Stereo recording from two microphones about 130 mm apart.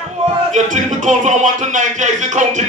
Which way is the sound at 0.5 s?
65° right (ahead or behind).